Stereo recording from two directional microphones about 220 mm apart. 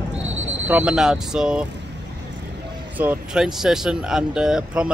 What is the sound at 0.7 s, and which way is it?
Speech, 5° right (ahead or behind).